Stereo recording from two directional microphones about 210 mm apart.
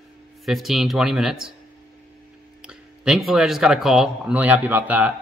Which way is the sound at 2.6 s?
5° right (ahead or behind).